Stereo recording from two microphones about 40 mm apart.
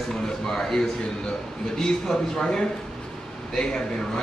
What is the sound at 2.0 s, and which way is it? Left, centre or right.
Speech, centre.